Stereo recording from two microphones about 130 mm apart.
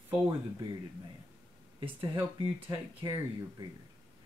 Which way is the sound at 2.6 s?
30° right (ahead or behind).